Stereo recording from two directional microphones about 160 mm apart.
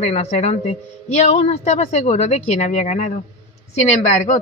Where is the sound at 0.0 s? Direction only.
45° left (ahead or behind).